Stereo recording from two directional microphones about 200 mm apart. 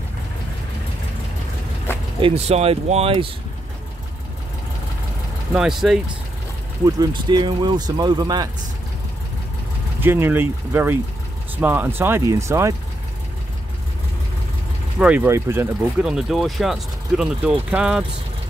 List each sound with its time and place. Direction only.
2.1 s speech: 30° right (ahead or behind)
5.5 s speech: 5° right (ahead or behind)
7.0 s speech: 20° right (ahead or behind)
9.9 s speech: 10° right (ahead or behind)
15.0 s speech: 5° right (ahead or behind)